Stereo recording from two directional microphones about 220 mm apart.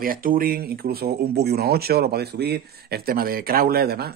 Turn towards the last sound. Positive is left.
turn(degrees=-45)  # may be behind; listen again after turning